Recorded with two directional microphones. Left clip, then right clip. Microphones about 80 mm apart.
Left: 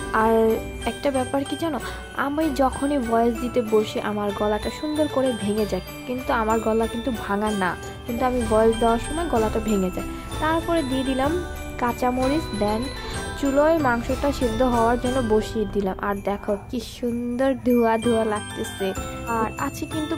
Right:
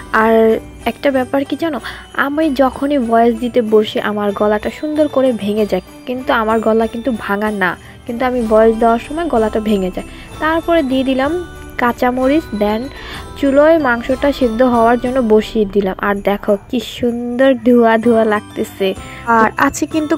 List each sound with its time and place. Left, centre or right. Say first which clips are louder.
0.1 s speech: right 8 dB; right
8.2 s jingle bell: right 8 dB; right
12.1 s speech: right 9 dB; right
13.4 s jingle bell: right 9 dB; right
13.8 s speech: right 8 dB; right
17.4 s jingle bell: right 10 dB; right
17.9 s speech: right 10 dB; right